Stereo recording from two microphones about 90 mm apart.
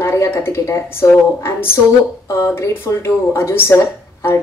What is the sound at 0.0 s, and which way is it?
Speech, 30° left (ahead or behind).